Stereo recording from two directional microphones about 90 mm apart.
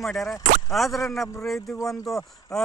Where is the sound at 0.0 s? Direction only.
Centre (ahead or behind).